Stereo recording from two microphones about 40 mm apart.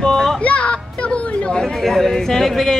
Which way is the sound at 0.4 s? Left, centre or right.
Left.